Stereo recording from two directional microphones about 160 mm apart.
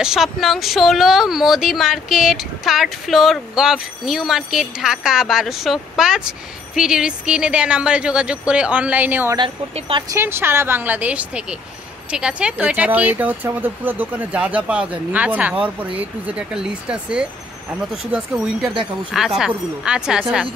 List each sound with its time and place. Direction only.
0.0 s speech: centre (ahead or behind)
9.4 s speech: 30° right (ahead or behind)
10.1 s speech: 15° right (ahead or behind)